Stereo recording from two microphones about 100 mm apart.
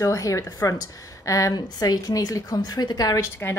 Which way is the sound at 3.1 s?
20° left (ahead or behind).